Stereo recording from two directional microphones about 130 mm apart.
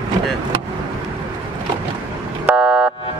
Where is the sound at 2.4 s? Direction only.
10° right (ahead or behind).